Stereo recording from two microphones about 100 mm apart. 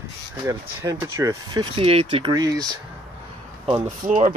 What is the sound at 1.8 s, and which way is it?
Speech, 65° right (ahead or behind).